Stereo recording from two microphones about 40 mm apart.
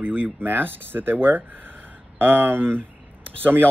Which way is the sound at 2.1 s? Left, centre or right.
Right.